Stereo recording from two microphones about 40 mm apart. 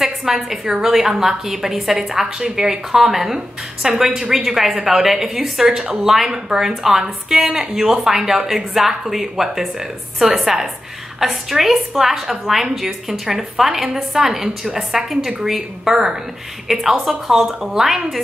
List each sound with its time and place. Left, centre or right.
0.0 s a woman's voice: centre
0.7 s a woman's voice: centre
5.9 s a woman's voice: centre